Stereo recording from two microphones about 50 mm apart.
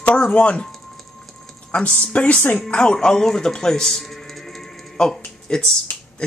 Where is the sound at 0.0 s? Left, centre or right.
Left.